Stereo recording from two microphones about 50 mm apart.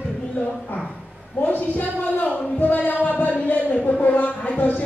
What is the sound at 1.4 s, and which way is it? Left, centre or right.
Speech, left.